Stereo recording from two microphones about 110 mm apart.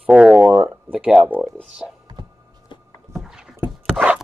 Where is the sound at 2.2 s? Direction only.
45° right (ahead or behind).